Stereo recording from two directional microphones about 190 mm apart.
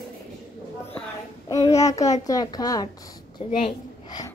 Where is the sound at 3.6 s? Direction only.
20° left (ahead or behind).